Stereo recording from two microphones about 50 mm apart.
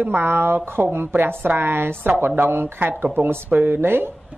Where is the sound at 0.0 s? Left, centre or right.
Right.